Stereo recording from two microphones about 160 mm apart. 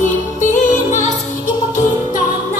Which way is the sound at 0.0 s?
50° left (ahead or behind).